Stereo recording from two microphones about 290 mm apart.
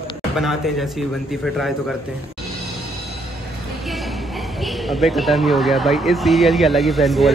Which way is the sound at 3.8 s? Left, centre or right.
Centre.